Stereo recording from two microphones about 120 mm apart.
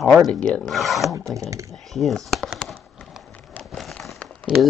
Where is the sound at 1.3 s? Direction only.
25° right (ahead or behind).